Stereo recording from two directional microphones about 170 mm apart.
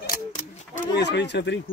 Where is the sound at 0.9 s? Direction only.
90° left.